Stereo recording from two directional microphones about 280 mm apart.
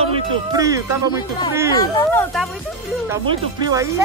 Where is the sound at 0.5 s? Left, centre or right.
Centre.